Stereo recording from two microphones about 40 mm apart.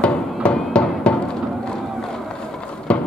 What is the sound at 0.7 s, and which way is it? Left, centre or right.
Music, left.